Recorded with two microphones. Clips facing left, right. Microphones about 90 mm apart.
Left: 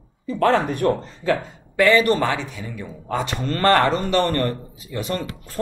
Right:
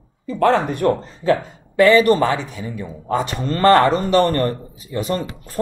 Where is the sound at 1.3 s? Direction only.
25° right (ahead or behind).